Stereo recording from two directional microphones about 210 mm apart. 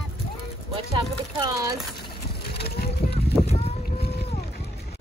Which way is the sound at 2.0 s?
50° left (ahead or behind).